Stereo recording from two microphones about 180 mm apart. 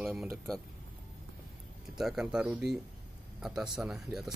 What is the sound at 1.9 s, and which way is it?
Speech, 5° right (ahead or behind).